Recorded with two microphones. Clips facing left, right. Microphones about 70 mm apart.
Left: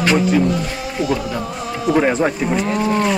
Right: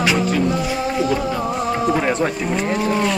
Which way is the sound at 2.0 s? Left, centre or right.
Centre.